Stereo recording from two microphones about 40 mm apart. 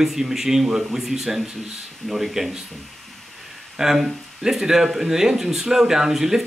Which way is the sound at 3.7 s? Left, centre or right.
Centre.